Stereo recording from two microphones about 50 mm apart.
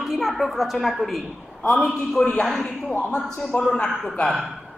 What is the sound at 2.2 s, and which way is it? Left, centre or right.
Speech, left.